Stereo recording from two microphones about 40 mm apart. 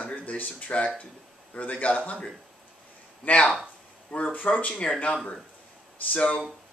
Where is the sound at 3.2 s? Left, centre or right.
Left.